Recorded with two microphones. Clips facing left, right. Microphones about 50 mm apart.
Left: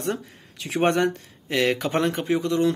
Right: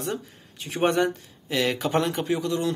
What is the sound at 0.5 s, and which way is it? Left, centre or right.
Speech, left.